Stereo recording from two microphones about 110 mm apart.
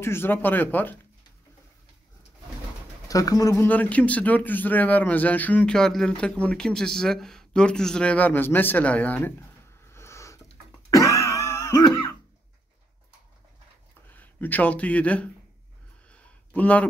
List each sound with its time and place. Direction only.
0.0 s a man's voice: 20° left (ahead or behind)
3.1 s speech: 35° left (ahead or behind)
3.5 s a man's voice: 15° left (ahead or behind)
9.8 s a sound: 25° left (ahead or behind)
10.9 s cough: 30° left (ahead or behind)
14.1 s speech: 15° left (ahead or behind)
16.1 s a sound: 15° left (ahead or behind)